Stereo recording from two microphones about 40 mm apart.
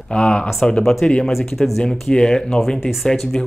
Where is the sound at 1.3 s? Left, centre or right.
Centre.